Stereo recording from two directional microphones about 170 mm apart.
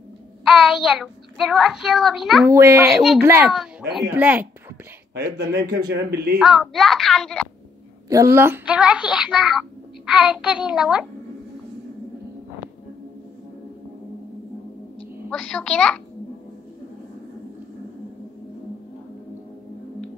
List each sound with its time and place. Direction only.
0.5 s a child's voice: centre (ahead or behind)
2.4 s a child's voice: 15° right (ahead or behind)
2.9 s a child's voice: centre (ahead or behind)
3.2 s a child's voice: 15° right (ahead or behind)
5.1 s speech: 75° right (ahead or behind)
6.4 s a child's voice: centre (ahead or behind)
8.1 s a child's voice: 15° right (ahead or behind)
15.2 s a child's voice: centre (ahead or behind)